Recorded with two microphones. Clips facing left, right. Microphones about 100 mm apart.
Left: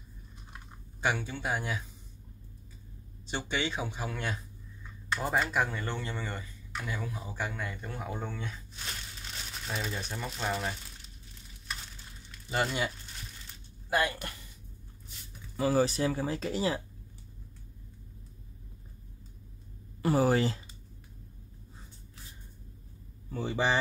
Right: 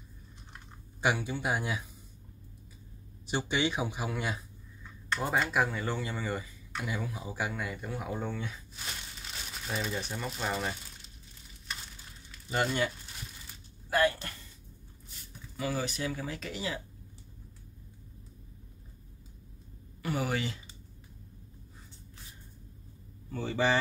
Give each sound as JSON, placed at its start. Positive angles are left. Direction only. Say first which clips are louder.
{"t": 1.0, "sound": "speech", "louder": "right 2 dB", "side_deg": -15}
{"t": 3.3, "sound": "speech", "louder": "right 3 dB", "side_deg": -15}
{"t": 5.4, "sound": "speech", "louder": "right 1 dB", "side_deg": 0}
{"t": 12.3, "sound": "speech", "louder": "even", "side_deg": 0}
{"t": 13.8, "sound": "speech", "louder": "right 2 dB", "side_deg": 15}
{"t": 15.5, "sound": "speech", "louder": "left 7 dB", "side_deg": 35}
{"t": 20.0, "sound": "speech", "louder": "left 7 dB", "side_deg": 35}
{"t": 23.3, "sound": "speech", "louder": "right 1 dB", "side_deg": 15}